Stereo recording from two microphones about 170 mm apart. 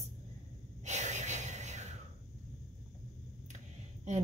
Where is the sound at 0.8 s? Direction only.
45° right (ahead or behind).